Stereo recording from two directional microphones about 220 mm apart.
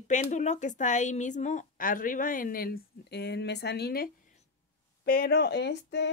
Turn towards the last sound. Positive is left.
turn(degrees=50)  # may be behind; listen again after turning